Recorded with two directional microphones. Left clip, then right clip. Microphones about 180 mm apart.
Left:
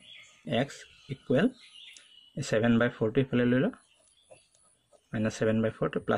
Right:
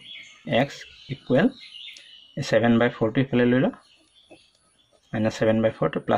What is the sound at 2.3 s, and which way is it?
Speech, 45° left (ahead or behind).